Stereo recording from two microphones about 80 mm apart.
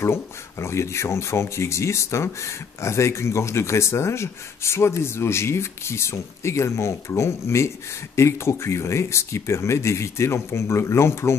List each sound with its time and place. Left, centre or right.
0.0 s speech: left